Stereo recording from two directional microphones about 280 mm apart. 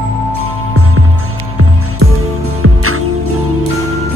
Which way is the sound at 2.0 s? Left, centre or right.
Right.